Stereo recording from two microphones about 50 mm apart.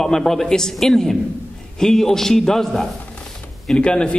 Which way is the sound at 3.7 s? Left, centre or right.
Centre.